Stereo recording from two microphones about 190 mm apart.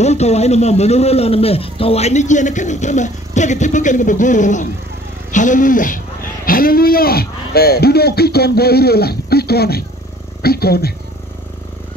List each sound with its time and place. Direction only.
0.0 s a man's voice: 35° left (ahead or behind); by 10.9 s 55° left (ahead or behind)